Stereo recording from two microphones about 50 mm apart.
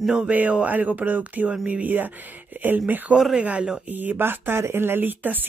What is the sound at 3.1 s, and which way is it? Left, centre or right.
Speech, centre.